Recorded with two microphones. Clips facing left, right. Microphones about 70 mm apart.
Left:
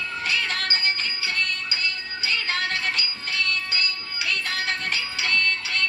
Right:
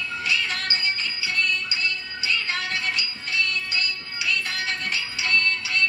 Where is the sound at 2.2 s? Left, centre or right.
Left.